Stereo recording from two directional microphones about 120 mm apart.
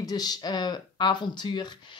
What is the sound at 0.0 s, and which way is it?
Speech, 35° left (ahead or behind).